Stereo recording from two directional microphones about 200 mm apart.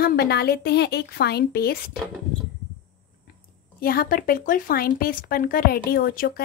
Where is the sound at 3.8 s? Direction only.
45° left (ahead or behind).